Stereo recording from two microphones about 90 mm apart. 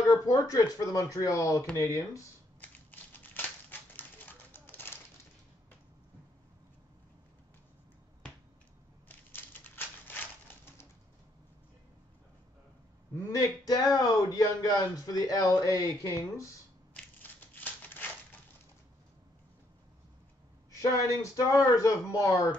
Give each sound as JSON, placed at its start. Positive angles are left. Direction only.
{"t": 0.1, "sound": "speech", "side_deg": 45}
{"t": 2.6, "sound": "a sound", "side_deg": 20}
{"t": 9.3, "sound": "typewriter", "side_deg": 20}
{"t": 13.1, "sound": "speech", "side_deg": 45}
{"t": 18.0, "sound": "crushing", "side_deg": 20}
{"t": 20.8, "sound": "speech", "side_deg": 35}